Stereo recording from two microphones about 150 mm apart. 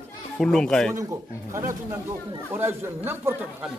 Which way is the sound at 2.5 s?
15° right (ahead or behind).